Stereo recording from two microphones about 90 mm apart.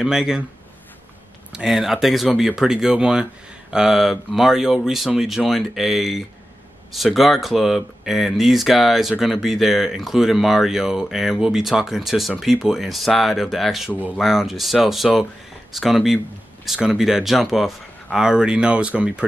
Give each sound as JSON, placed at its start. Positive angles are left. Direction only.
{"t": 0.0, "sound": "speech", "side_deg": -5}
{"t": 1.5, "sound": "speech", "side_deg": -5}